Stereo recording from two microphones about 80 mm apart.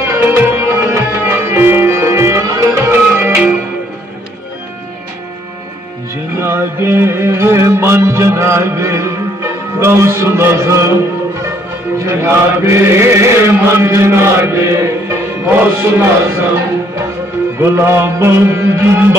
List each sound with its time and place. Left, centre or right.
0.1 s music: right
6.4 s music: right
12.0 s chant: right
17.6 s chant: right